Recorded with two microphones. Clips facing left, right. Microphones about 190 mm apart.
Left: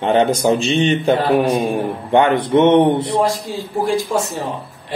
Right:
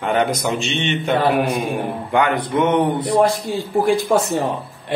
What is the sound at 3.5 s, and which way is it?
Speech, 55° right (ahead or behind).